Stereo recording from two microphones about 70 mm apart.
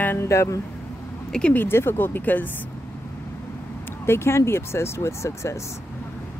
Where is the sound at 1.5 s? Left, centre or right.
Left.